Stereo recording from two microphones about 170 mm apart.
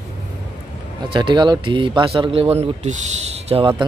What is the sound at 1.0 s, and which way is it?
Speech, 30° right (ahead or behind).